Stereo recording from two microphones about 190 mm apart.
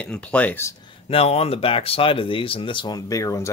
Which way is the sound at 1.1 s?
30° left (ahead or behind).